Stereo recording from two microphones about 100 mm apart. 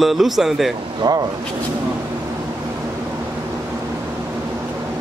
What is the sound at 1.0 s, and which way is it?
Speech, 45° right (ahead or behind).